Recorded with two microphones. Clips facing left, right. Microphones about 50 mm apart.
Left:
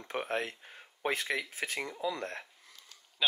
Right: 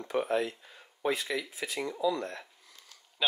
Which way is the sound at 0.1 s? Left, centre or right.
Left.